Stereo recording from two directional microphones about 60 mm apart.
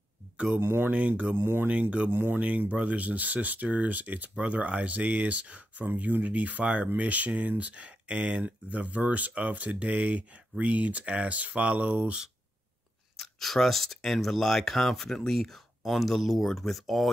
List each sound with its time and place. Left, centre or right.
0.6 s speech: right
0.9 s speech: right
1.3 s speech: right
1.7 s speech: right
13.2 s speech: centre